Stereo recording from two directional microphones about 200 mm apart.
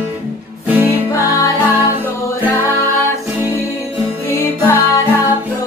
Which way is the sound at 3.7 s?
15° left (ahead or behind).